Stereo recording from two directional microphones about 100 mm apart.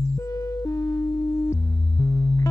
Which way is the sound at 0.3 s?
35° left (ahead or behind).